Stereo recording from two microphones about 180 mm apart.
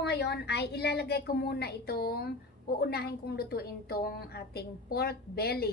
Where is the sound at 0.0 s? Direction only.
65° left (ahead or behind).